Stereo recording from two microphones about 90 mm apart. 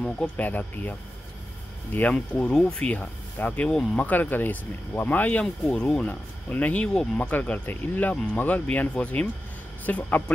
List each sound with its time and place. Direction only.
0.0 s speech: 15° left (ahead or behind)